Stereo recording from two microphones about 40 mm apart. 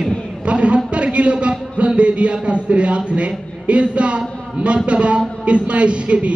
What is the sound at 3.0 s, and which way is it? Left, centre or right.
A man's voice, right.